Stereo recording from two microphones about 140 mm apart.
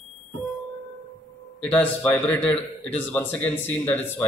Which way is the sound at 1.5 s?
10° left (ahead or behind).